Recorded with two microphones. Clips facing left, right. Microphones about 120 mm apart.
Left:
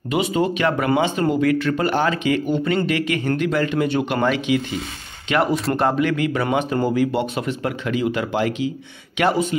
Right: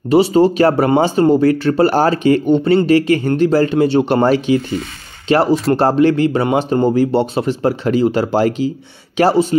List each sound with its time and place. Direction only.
0.1 s speech: 35° right (ahead or behind)